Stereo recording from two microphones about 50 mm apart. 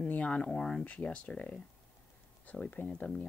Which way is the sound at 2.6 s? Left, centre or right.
Left.